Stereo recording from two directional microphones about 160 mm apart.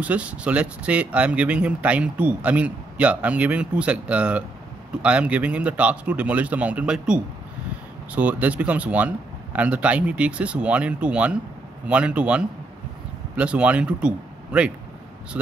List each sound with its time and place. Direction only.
0.0 s speech: 10° right (ahead or behind)